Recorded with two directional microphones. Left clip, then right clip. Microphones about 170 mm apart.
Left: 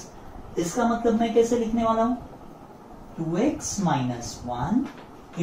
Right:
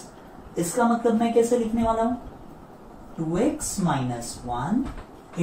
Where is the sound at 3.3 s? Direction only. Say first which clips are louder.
Right 1 dB; centre (ahead or behind).